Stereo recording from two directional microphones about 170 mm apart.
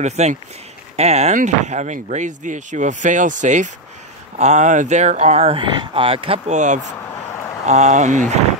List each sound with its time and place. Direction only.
0.0 s speech: 40° right (ahead or behind)